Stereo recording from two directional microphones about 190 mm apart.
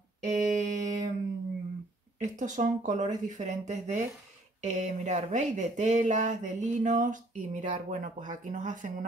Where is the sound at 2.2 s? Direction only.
40° right (ahead or behind).